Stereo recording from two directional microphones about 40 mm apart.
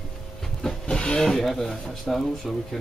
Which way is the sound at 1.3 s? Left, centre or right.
Centre.